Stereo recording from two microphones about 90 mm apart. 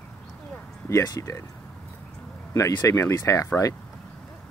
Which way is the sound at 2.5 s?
35° left (ahead or behind).